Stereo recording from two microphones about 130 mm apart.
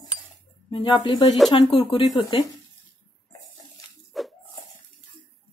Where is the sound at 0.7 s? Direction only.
45° left (ahead or behind).